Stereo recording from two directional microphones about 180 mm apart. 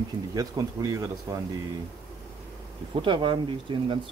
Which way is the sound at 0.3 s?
20° right (ahead or behind).